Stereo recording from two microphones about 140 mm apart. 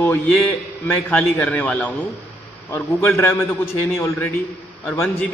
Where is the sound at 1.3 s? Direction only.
10° left (ahead or behind).